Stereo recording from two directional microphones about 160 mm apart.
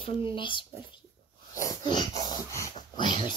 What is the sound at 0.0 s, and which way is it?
Speech, 35° left (ahead or behind).